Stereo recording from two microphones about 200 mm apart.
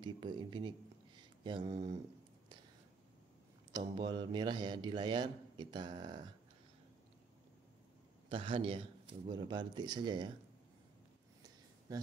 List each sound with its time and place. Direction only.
0.0 s speech: 20° right (ahead or behind)
3.7 s a man's voice: 20° right (ahead or behind)
8.3 s a man's voice: 25° right (ahead or behind)